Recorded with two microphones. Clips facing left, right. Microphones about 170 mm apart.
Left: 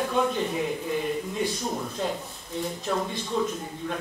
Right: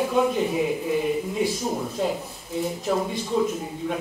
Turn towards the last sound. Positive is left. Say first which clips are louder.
# right 4 dB
turn(degrees=-5)  # may be behind; listen again after turning